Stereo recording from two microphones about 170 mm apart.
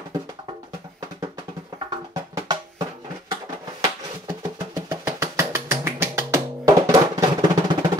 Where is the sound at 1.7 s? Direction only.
20° right (ahead or behind).